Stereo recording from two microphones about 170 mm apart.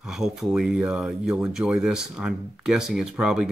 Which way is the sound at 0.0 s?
5° right (ahead or behind).